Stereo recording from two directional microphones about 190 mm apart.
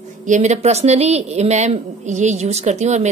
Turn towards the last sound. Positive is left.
turn(degrees=-35)  # may be behind; listen again after turning